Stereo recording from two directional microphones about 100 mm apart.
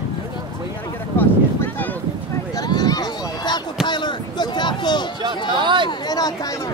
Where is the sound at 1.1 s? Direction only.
20° left (ahead or behind).